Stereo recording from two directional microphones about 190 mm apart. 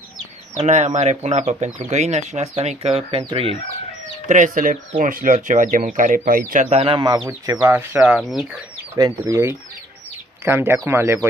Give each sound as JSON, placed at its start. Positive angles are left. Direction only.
{"t": 0.6, "sound": "speech", "side_deg": -40}
{"t": 4.3, "sound": "speech", "side_deg": -45}
{"t": 8.9, "sound": "speech", "side_deg": -15}